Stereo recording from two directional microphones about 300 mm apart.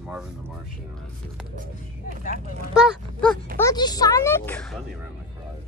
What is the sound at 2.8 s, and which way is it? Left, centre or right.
Speech, centre.